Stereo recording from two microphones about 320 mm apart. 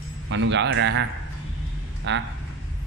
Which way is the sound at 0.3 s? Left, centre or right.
Right.